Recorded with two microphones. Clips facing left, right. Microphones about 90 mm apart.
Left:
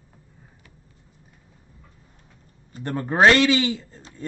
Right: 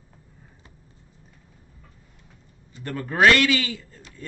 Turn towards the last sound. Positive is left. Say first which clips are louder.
# left 5 dB
turn(degrees=25)  # may be behind; listen again after turning